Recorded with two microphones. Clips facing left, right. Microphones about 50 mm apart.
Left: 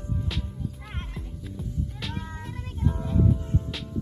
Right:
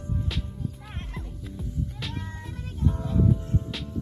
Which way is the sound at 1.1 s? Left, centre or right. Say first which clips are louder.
Even; centre.